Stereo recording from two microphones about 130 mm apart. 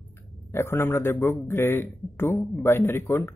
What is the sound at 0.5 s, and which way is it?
Speech, 20° left (ahead or behind).